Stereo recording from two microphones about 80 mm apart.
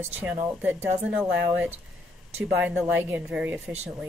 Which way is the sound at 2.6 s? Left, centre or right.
Right.